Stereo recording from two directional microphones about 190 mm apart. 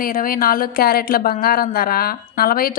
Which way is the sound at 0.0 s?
50° left (ahead or behind).